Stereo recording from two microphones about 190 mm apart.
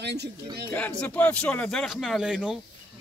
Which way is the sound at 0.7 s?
5° left (ahead or behind).